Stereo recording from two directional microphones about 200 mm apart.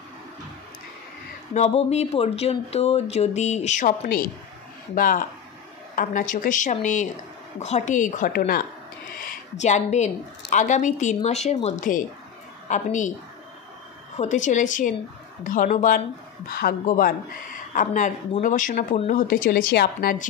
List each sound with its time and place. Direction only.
1.5 s speech: 35° left (ahead or behind)
4.0 s speech: 45° left (ahead or behind)
14.1 s speech: 35° left (ahead or behind)